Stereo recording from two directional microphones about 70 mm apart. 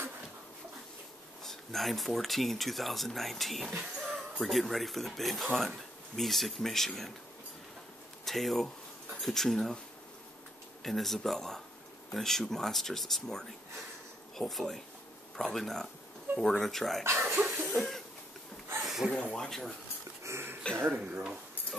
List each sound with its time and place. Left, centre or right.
1.4 s speech: centre
8.3 s speech: centre
10.8 s speech: centre
17.0 s speech: right
17.6 s cough: centre
18.8 s a sound: centre
19.3 s speech: centre
20.2 s a sound: right
20.9 s speech: centre